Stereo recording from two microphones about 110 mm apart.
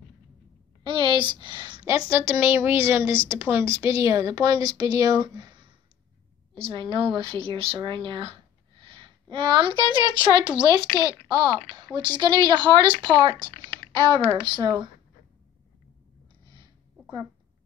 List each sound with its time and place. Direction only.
0.8 s a woman's voice: 45° right (ahead or behind)
1.9 s a woman's voice: 25° right (ahead or behind); by 5.7 s 45° right (ahead or behind)
6.5 s a woman's voice: 55° right (ahead or behind); by 14.9 s 40° right (ahead or behind)